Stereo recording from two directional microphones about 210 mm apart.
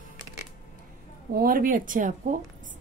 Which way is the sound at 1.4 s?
40° right (ahead or behind).